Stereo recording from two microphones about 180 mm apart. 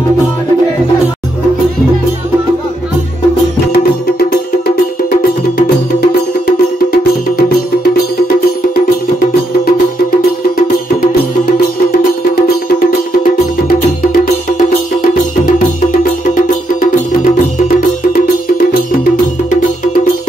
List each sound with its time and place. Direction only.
12.7 s music: 55° left (ahead or behind)
16.0 s music: 55° left (ahead or behind)